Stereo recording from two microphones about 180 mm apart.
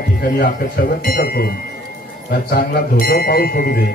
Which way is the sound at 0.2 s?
55° left (ahead or behind).